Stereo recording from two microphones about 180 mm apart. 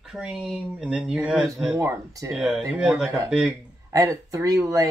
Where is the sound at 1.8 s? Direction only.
15° right (ahead or behind).